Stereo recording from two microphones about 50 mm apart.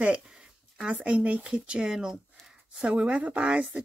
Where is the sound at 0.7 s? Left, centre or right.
Right.